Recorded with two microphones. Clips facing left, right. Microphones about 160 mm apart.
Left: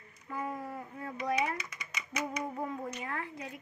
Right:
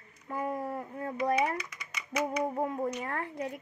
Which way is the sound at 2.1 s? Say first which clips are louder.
Right 5 dB; 35° right (ahead or behind).